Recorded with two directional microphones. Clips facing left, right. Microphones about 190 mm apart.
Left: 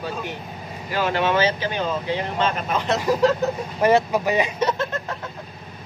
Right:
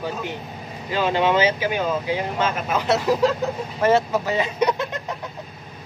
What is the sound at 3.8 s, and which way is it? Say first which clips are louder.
Speech: left 1 dB; 15° left (ahead or behind).